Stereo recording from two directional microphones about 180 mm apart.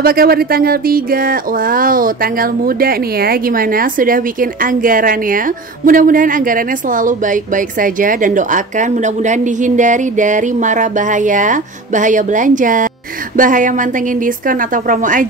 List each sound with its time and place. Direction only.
0.0 s speech: 55° right (ahead or behind)